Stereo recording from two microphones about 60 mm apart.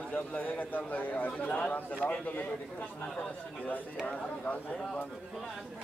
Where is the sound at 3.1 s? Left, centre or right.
Centre.